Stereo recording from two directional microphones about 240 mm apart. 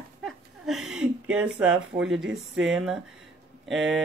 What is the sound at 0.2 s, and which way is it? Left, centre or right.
Speech, centre.